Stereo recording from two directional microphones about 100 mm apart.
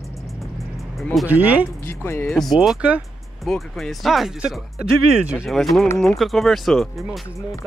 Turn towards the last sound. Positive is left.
turn(degrees=0)  # may be behind; listen again after turning